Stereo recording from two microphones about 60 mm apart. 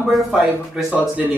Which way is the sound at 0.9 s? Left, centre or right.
Right.